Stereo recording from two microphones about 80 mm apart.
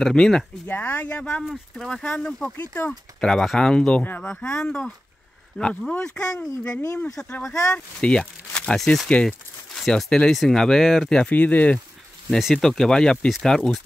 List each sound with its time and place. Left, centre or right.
0.0 s speech: centre
0.7 s speech: left
1.4 s speech: centre
2.5 s speech: left
3.2 s speech: centre
7.7 s speech: centre
12.3 s speech: centre